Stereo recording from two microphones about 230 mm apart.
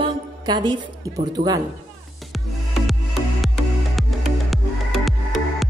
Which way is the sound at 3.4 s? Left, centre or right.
Centre.